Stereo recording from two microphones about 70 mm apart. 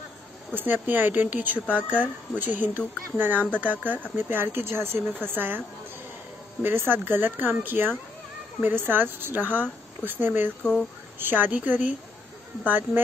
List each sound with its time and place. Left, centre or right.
0.8 s speech: right
6.6 s speech: right
10.6 s speech: centre
11.1 s speech: right